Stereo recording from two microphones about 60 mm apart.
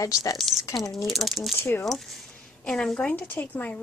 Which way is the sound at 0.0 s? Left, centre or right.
Left.